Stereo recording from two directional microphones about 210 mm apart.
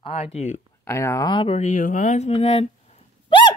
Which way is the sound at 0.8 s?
15° left (ahead or behind).